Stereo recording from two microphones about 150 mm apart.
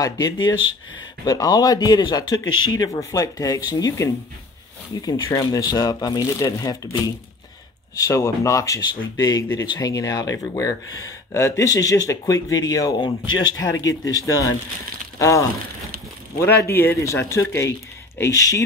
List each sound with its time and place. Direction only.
0.0 s speech: 25° left (ahead or behind)
8.0 s speech: 20° left (ahead or behind)
15.1 s a sound: 20° left (ahead or behind)
16.3 s speech: 15° left (ahead or behind)